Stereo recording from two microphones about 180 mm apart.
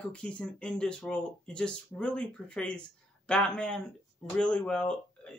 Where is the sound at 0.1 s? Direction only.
5° left (ahead or behind).